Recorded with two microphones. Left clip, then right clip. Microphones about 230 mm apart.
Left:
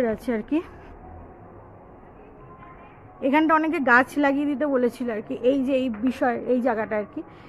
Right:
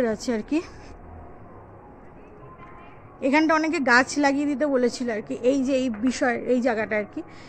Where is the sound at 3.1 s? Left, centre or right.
Centre.